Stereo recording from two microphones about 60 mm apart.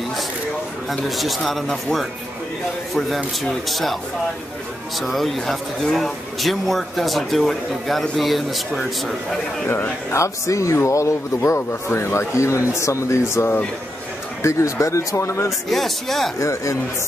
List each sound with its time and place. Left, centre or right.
0.8 s speech: centre
3.6 s speech: centre
5.0 s speech: centre
10.1 s a man's voice: left
15.7 s speech: centre
16.3 s a man's voice: left